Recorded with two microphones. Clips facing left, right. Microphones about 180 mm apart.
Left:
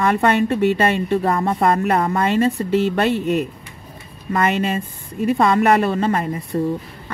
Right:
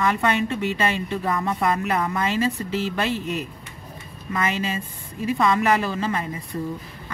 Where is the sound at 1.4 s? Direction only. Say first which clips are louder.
Left 5 dB; 45° left (ahead or behind).